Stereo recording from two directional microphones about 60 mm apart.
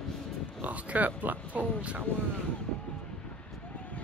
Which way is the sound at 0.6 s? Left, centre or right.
Right.